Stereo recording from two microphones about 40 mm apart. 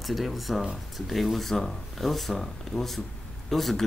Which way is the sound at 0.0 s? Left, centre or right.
Centre.